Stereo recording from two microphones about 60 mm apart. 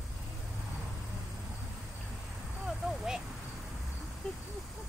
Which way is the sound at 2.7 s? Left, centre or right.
Centre.